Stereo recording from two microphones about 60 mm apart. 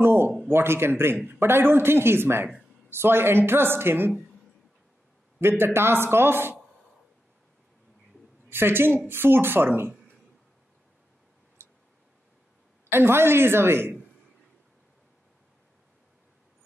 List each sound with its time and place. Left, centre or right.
0.0 s a sound: right
0.5 s speech: right
5.4 s speech: right
8.5 s speech: right
11.6 s tick-tock: right
12.9 s speech: right